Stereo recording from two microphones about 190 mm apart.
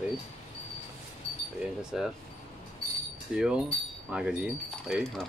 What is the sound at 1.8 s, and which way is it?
Speech, 5° right (ahead or behind).